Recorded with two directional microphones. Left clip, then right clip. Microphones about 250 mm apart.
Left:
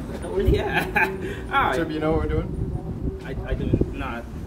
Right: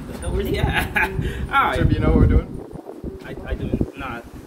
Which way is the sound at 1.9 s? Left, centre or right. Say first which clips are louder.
Right 3 dB; centre.